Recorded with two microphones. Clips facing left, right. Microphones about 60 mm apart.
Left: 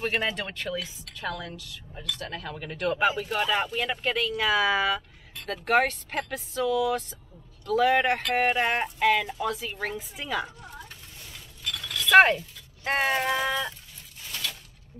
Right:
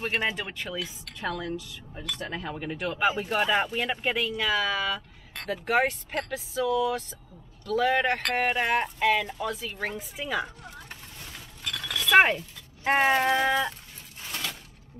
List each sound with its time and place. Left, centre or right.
0.0 s speech: centre
1.2 s speech: right
2.5 s speech: centre
3.2 s speech: centre
4.4 s speech: centre
5.5 s speech: centre
7.6 s speech: centre
9.8 s speech: centre
11.1 s chink: right
12.1 s speech: centre
12.4 s a sound: centre
13.4 s speech: centre
14.3 s a sound: right